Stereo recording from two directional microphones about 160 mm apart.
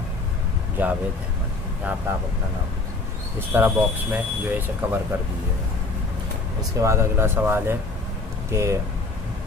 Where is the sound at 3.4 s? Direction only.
15° right (ahead or behind).